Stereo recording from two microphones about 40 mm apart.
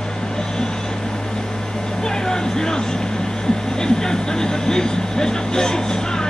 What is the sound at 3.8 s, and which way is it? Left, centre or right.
Speech, centre.